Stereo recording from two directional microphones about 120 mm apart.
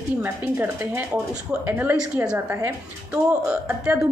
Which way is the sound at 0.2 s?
15° right (ahead or behind).